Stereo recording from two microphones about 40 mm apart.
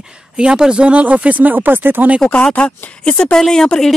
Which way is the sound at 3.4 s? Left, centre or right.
Centre.